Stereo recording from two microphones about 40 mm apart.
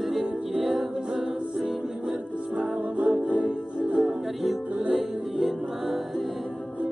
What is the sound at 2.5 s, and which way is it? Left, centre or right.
Music, right.